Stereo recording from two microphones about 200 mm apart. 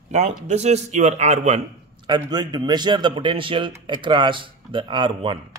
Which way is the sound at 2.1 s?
20° right (ahead or behind).